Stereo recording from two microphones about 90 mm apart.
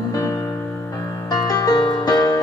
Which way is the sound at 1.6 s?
45° left (ahead or behind).